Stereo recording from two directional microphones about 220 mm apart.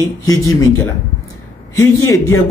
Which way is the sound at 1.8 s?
10° left (ahead or behind).